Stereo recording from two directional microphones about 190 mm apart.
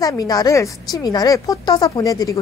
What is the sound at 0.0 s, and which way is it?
Speech, 20° left (ahead or behind).